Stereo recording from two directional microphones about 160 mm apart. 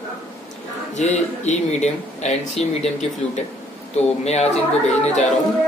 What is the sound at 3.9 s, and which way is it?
Speech, 40° left (ahead or behind).